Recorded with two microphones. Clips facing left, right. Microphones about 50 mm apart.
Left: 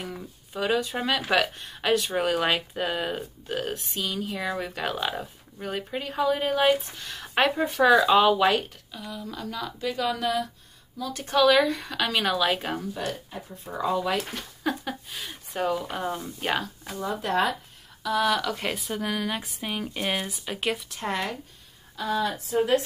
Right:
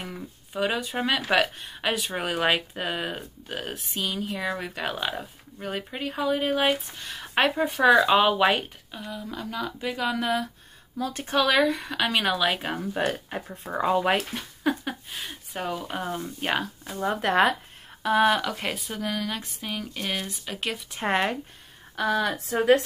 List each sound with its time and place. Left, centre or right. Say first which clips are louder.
0.0 s speech: even; centre
11.0 s speech: right 3 dB; right
11.2 s speech: left 2 dB; centre
13.3 s speech: right 5 dB; right
13.7 s speech: right 3 dB; right
14.3 s speech: right 2 dB; centre
17.0 s speech: right 4 dB; right
18.0 s speech: right 3 dB; right
18.4 s speech: left 1 dB; centre
20.9 s speech: right 5 dB; right
21.9 s speech: right 2 dB; right